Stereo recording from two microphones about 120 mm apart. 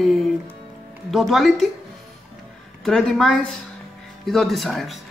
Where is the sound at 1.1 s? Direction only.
Centre (ahead or behind).